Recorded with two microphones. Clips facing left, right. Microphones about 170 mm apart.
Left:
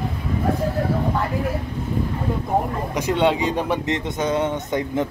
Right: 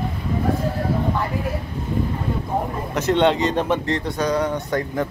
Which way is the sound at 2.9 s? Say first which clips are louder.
Right 2 dB; 10° left (ahead or behind).